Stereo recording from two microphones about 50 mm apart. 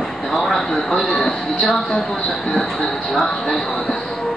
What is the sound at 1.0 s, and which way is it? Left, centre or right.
Music, centre.